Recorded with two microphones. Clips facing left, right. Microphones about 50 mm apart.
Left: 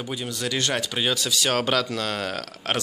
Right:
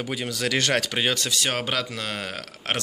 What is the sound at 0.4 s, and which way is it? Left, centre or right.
Speech, right.